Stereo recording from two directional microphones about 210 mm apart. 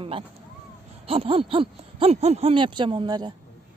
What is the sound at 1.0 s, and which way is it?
A woman's voice, 25° right (ahead or behind).